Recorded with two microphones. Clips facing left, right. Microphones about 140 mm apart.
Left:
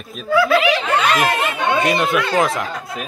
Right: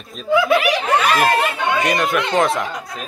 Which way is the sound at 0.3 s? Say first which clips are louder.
Even; 20° right (ahead or behind).